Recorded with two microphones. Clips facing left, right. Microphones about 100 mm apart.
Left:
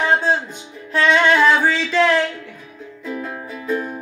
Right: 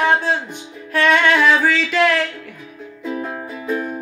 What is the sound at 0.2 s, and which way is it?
Music, 30° left (ahead or behind).